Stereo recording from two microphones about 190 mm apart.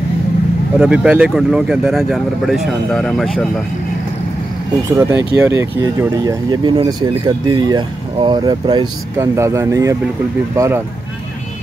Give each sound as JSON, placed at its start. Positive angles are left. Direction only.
{"t": 0.7, "sound": "speech", "side_deg": -5}
{"t": 4.8, "sound": "speech", "side_deg": -15}